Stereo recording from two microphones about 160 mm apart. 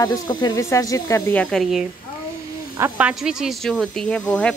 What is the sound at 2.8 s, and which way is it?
Speech, 5° right (ahead or behind).